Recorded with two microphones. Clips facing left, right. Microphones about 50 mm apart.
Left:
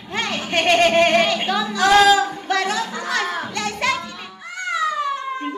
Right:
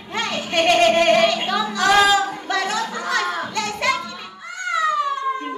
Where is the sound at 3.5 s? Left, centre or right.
Left.